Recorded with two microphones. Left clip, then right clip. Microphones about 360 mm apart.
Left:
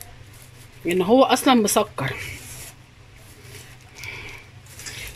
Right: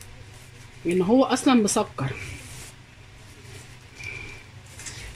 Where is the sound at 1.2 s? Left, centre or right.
Left.